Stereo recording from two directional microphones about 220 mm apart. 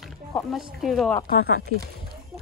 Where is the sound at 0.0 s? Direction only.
Centre (ahead or behind).